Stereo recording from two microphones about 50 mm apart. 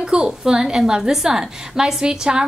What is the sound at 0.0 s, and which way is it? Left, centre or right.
A woman's voice, centre.